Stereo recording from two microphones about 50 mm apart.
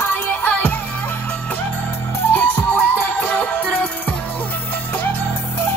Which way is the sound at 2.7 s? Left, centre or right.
Left.